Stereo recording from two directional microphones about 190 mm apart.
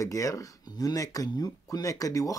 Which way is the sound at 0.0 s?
15° left (ahead or behind).